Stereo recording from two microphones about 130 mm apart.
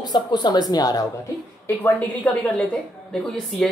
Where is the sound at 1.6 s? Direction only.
15° left (ahead or behind).